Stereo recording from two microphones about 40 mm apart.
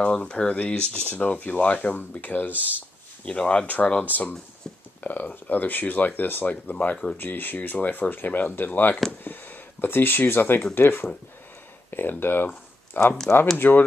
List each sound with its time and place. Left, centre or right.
0.0 s speech: left
2.5 s speech: right
3.3 s speech: left
3.6 s speech: left
5.0 s speech: left
6.4 s speech: left
7.2 s speech: left
9.2 s a sound: left
10.7 s speech: left
13.0 s speech: left
13.6 s speech: left